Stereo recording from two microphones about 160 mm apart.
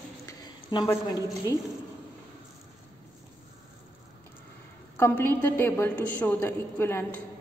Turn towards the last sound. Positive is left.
turn(degrees=15)  # may be behind; listen again after turning